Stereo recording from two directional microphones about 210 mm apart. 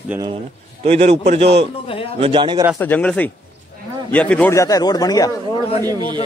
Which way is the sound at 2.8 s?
5° left (ahead or behind).